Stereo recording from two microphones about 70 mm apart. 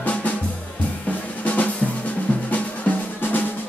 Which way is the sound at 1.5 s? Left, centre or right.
Centre.